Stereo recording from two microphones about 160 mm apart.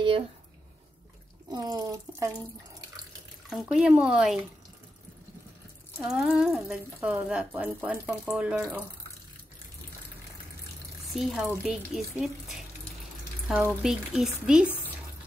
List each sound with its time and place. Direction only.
1.5 s speech: 25° right (ahead or behind)
3.4 s speech: centre (ahead or behind)
6.0 s speech: 5° right (ahead or behind)
11.1 s speech: centre (ahead or behind)